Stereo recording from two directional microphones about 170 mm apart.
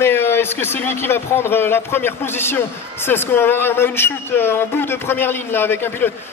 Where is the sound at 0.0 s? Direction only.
15° left (ahead or behind).